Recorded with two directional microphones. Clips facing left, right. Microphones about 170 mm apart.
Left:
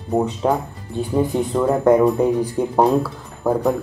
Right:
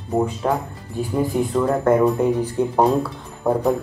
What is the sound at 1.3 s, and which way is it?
Speech, 25° left (ahead or behind).